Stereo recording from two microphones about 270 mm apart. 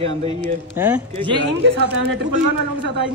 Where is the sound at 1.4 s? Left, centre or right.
Right.